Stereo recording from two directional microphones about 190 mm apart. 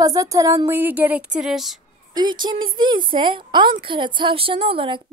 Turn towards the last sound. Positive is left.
turn(degrees=-30)  # may be behind; listen again after turning